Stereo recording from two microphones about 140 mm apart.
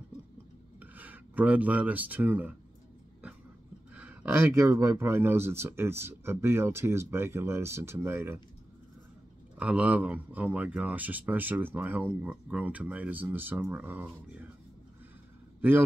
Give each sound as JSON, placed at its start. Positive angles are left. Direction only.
{"t": 0.7, "sound": "speech", "side_deg": -10}
{"t": 3.9, "sound": "speech", "side_deg": -10}
{"t": 9.6, "sound": "speech", "side_deg": -10}